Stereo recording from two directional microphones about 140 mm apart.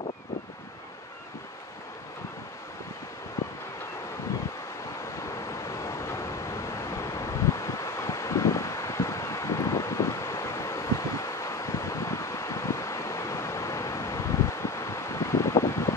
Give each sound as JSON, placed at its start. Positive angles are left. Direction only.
{"t": 5.5, "sound": "vehicle", "side_deg": 20}